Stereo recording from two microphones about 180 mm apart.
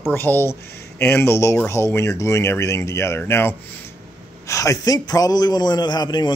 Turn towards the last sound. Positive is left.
turn(degrees=25)  # may be behind; listen again after turning